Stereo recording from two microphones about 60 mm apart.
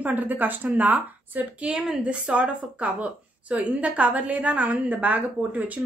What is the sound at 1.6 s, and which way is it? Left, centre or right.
A woman's voice, centre.